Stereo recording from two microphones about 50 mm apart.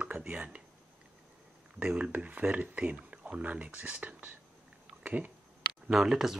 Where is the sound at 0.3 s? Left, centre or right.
Right.